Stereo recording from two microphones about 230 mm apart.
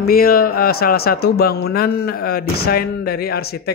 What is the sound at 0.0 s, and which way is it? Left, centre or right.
Speech, left.